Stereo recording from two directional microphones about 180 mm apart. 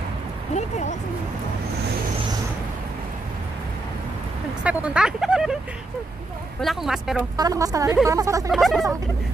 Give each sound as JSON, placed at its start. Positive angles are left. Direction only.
{"t": 0.6, "sound": "speech", "side_deg": 40}
{"t": 4.6, "sound": "speech", "side_deg": -5}
{"t": 6.6, "sound": "speech", "side_deg": 0}
{"t": 7.3, "sound": "a woman's voice", "side_deg": -20}
{"t": 8.5, "sound": "speech", "side_deg": 0}